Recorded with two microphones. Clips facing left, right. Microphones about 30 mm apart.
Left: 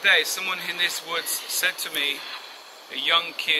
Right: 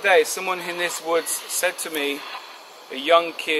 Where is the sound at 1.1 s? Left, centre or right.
Left.